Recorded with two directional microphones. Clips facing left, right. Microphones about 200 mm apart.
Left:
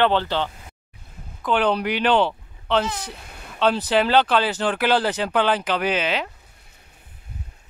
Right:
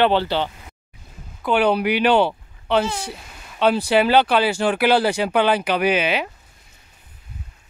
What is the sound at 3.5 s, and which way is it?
Speech, 10° right (ahead or behind).